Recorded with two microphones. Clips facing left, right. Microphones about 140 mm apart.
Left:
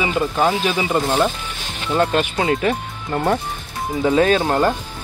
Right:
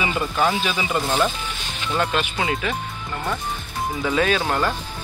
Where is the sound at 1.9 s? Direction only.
40° left (ahead or behind).